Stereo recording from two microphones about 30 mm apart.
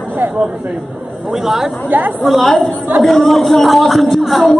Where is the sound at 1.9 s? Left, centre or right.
Right.